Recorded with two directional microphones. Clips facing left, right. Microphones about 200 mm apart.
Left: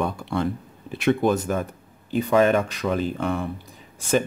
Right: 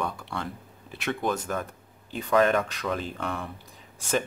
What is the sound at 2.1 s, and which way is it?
Speech, 5° left (ahead or behind).